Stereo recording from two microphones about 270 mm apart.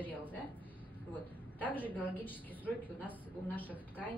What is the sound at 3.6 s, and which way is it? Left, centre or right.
Speech, centre.